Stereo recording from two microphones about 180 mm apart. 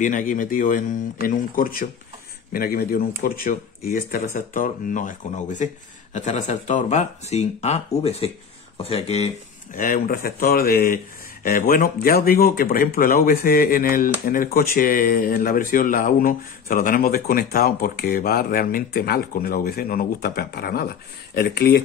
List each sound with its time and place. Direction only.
0.0 s speech: 45° left (ahead or behind)
9.8 s speech: 50° left (ahead or behind)